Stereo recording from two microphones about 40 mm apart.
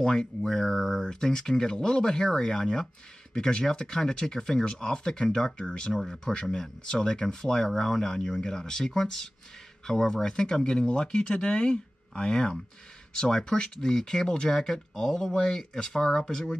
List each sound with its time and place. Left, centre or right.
0.0 s speech: centre